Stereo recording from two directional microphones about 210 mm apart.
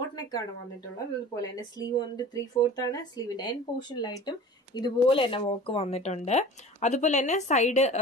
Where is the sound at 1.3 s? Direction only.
20° left (ahead or behind).